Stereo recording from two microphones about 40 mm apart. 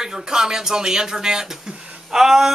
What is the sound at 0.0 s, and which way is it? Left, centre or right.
Speech, centre.